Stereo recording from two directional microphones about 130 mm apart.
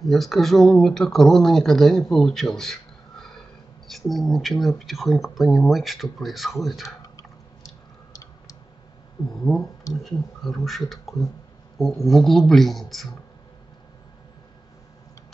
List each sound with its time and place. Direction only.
0.0 s speech: centre (ahead or behind)
7.0 s tick-tock: 25° left (ahead or behind)
10.0 s speech: centre (ahead or behind)